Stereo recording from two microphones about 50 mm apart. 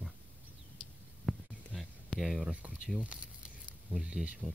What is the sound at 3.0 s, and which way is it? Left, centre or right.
Crumpling, centre.